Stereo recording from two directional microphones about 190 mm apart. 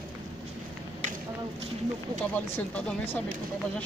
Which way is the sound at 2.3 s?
5° left (ahead or behind).